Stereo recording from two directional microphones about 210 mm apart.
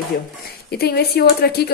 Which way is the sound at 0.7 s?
50° left (ahead or behind).